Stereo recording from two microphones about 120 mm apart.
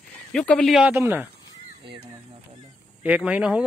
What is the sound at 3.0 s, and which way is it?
Speech, 10° right (ahead or behind).